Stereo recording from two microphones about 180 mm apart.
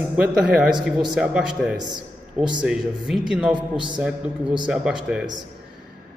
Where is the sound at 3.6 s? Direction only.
25° right (ahead or behind).